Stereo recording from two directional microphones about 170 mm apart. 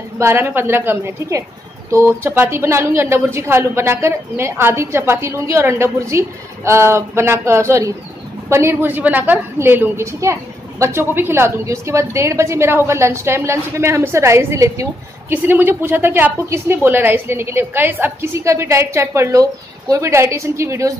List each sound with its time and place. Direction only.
0.2 s a woman's voice: 15° right (ahead or behind)